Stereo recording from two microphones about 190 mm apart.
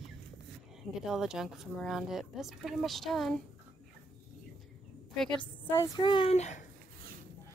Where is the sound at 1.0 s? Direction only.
Centre (ahead or behind).